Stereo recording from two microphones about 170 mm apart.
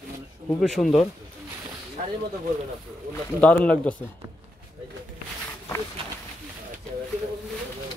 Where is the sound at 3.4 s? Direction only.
5° left (ahead or behind).